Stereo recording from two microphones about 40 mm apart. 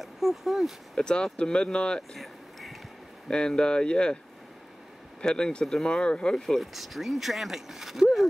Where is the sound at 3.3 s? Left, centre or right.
Centre.